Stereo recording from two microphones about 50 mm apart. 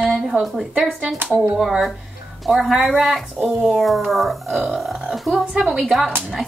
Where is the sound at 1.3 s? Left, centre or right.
Right.